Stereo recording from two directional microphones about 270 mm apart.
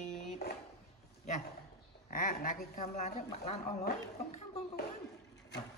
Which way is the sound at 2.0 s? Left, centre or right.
Left.